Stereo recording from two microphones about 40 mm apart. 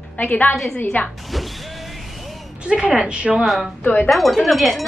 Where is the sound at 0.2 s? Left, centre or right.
Left.